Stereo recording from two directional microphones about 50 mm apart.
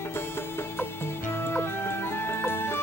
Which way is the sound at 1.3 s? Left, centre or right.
Left.